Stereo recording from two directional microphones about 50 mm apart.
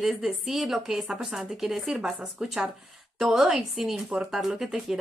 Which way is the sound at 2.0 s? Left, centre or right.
Centre.